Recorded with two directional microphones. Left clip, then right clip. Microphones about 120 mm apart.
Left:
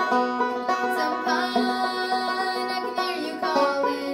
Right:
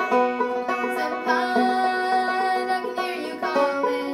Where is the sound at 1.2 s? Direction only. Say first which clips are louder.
Right 2 dB; 5° right (ahead or behind).